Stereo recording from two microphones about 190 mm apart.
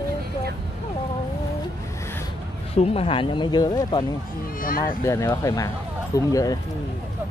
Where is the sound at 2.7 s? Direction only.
30° left (ahead or behind).